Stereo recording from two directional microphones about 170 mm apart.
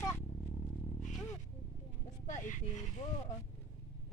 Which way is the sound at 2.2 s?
45° left (ahead or behind).